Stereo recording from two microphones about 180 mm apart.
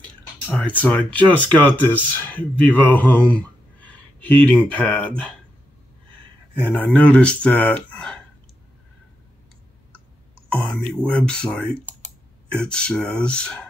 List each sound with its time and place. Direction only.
0.0 s speech: 5° left (ahead or behind)
6.6 s speech: 10° left (ahead or behind)
10.5 s speech: 5° left (ahead or behind)